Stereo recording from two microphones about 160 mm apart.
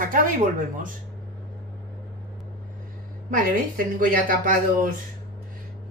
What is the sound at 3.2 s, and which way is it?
Speech, 60° right (ahead or behind).